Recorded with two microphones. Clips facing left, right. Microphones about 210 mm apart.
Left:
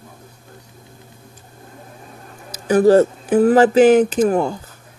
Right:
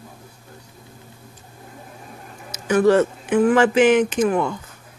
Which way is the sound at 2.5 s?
35° left (ahead or behind).